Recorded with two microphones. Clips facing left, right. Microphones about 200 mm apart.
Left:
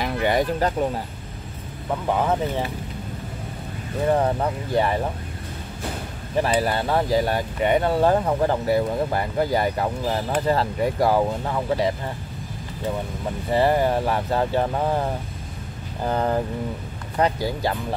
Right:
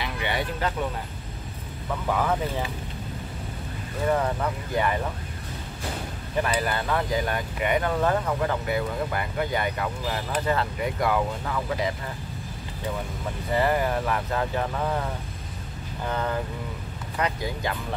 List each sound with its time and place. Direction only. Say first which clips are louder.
0.0 s speech: left 8 dB; 45° left (ahead or behind)
2.0 s speech: left 3 dB; 25° left (ahead or behind)
4.1 s speech: left 4 dB; 30° left (ahead or behind)
6.4 s speech: left 5 dB; 30° left (ahead or behind)
13.5 s speech: left 4 dB; 30° left (ahead or behind)